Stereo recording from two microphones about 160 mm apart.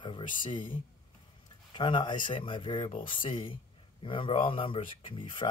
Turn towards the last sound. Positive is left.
turn(degrees=30)  # may be behind; listen again after turning